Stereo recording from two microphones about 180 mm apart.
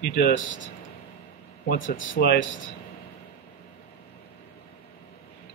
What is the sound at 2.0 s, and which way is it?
Speech, 75° left (ahead or behind).